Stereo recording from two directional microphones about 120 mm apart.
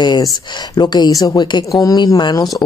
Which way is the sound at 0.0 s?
40° left (ahead or behind).